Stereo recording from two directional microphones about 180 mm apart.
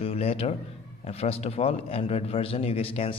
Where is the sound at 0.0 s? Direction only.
35° left (ahead or behind).